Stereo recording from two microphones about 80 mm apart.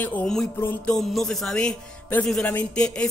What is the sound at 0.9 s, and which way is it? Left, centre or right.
Speech, centre.